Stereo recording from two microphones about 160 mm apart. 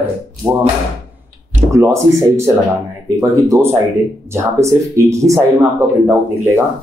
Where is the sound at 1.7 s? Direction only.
20° right (ahead or behind).